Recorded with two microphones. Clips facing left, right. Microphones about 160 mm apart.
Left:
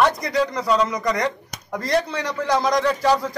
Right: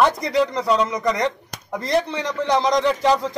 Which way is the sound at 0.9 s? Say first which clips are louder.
Right 1 dB; 25° right (ahead or behind).